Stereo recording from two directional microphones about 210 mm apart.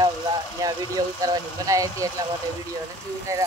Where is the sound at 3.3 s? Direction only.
15° right (ahead or behind).